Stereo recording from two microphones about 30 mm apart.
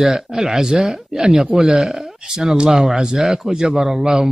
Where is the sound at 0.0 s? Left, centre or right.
Centre.